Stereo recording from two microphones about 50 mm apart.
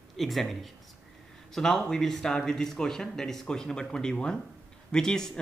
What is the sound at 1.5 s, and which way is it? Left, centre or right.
Speech, centre.